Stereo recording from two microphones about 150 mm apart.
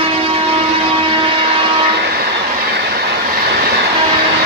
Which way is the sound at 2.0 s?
90° right.